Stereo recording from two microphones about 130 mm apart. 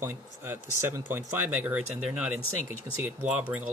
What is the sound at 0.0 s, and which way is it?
Speech, 15° right (ahead or behind).